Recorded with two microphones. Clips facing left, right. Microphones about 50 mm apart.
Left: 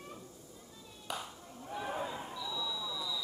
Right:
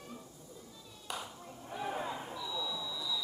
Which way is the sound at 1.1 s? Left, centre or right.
Centre.